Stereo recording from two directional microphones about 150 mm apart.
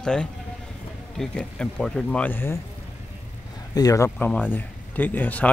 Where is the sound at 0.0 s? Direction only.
5° left (ahead or behind).